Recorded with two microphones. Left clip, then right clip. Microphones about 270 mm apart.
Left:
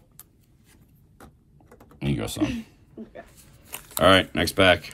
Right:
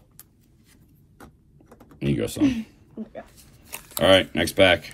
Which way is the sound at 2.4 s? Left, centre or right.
Centre.